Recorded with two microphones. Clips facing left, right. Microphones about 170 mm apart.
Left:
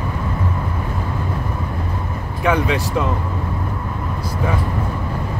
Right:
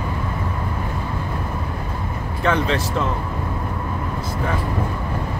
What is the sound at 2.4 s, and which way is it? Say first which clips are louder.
Speech: left 2 dB; 15° left (ahead or behind).